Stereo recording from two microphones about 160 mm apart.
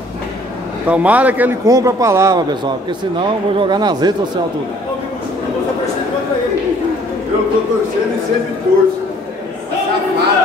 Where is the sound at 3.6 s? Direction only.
25° right (ahead or behind).